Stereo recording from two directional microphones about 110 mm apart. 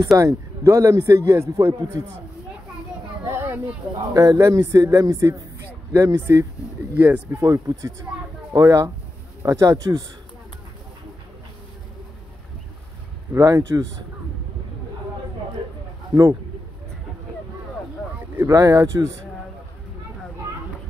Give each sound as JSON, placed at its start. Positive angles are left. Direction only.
{"t": 0.0, "sound": "speech", "side_deg": -30}
{"t": 3.3, "sound": "a sound", "side_deg": -20}
{"t": 4.1, "sound": "speech", "side_deg": -30}
{"t": 13.3, "sound": "speech", "side_deg": -35}
{"t": 18.5, "sound": "speech", "side_deg": -30}